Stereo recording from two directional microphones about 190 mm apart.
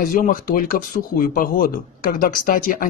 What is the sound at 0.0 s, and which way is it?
A man's voice, 45° left (ahead or behind).